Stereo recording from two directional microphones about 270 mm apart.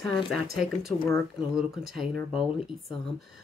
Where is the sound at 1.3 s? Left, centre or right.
Centre.